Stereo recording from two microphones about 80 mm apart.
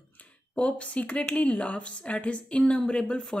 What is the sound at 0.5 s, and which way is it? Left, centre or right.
Speech, centre.